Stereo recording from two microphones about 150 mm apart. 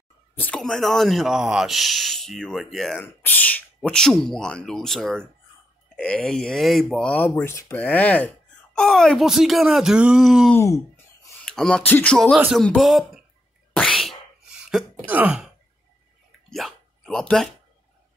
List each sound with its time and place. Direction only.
0.3 s speech: 10° left (ahead or behind)
3.0 s speech: 10° left (ahead or behind)
10.5 s speech: 20° left (ahead or behind)
11.4 s speech: 5° left (ahead or behind)
13.7 s sneeze: centre (ahead or behind)
14.6 s a sound: 5° right (ahead or behind)
15.0 s throat clearing: 10° right (ahead or behind)
16.3 s a sound: centre (ahead or behind)